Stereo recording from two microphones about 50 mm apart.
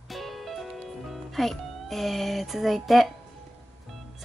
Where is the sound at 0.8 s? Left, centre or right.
Centre.